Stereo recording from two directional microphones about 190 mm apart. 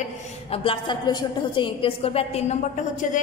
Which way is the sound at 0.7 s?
25° left (ahead or behind).